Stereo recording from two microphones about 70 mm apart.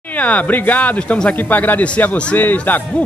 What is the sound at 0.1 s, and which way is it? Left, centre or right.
A man's voice, left.